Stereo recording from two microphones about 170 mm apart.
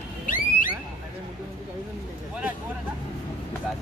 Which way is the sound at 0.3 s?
50° left (ahead or behind).